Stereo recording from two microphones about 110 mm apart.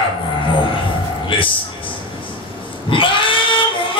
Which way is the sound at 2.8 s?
50° left (ahead or behind).